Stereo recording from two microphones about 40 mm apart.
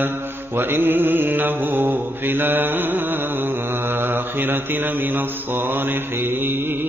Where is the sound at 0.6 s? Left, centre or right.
Right.